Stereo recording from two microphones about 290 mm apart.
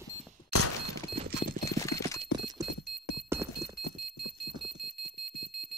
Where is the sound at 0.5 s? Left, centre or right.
Left.